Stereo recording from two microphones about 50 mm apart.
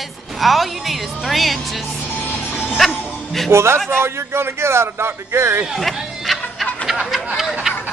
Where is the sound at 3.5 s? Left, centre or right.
Right.